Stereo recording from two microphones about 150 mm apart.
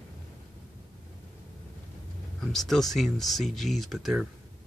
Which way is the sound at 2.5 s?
Centre (ahead or behind).